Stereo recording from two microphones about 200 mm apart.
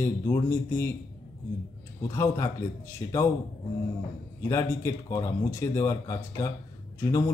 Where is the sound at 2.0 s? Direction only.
15° left (ahead or behind).